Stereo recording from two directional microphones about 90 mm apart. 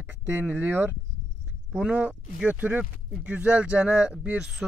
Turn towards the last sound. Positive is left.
turn(degrees=-10)  # may be behind; listen again after turning